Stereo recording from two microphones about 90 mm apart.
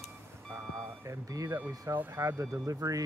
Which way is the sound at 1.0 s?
40° right (ahead or behind).